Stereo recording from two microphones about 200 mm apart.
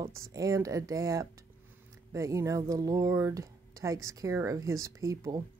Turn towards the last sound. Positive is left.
turn(degrees=-15)  # may be behind; listen again after turning